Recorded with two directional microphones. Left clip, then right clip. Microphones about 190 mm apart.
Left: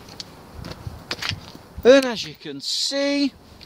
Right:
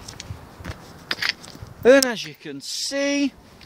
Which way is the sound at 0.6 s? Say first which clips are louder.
Right 3 dB; centre (ahead or behind).